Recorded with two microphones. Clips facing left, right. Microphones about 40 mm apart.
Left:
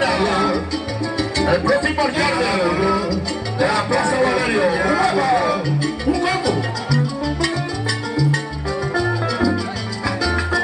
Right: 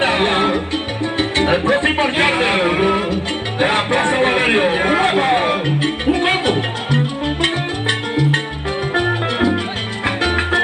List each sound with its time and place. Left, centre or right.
0.0 s music: right
8.9 s music: right